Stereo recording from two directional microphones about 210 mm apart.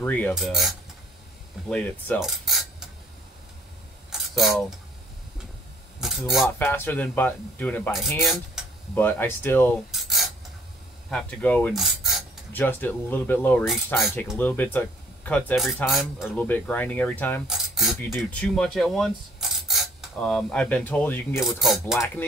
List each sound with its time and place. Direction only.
0.0 s speech: 10° left (ahead or behind)
0.3 s cutlery: centre (ahead or behind)
4.1 s mechanisms: centre (ahead or behind)
5.9 s a sound: centre (ahead or behind)
6.6 s speech: 10° left (ahead or behind)
9.8 s filing: centre (ahead or behind)
11.1 s a sound: 5° left (ahead or behind)
12.5 s speech: 10° left (ahead or behind)
17.5 s cutlery: centre (ahead or behind)
19.7 s filing: centre (ahead or behind)
21.5 s cutlery: centre (ahead or behind)